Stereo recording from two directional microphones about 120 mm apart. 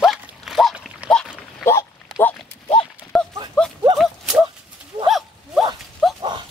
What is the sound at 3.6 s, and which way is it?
Horse, 5° left (ahead or behind).